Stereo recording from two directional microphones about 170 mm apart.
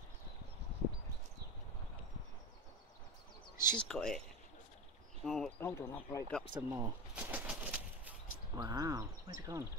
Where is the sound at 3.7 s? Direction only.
5° left (ahead or behind).